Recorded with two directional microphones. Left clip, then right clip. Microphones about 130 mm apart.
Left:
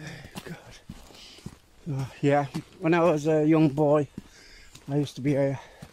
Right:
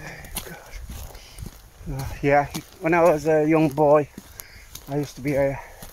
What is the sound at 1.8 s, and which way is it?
Speech, 20° left (ahead or behind).